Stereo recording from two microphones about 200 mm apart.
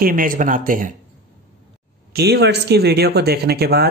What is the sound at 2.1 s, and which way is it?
Speech, 55° right (ahead or behind).